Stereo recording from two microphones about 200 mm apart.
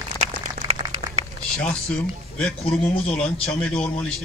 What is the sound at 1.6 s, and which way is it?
A man's voice, 5° left (ahead or behind).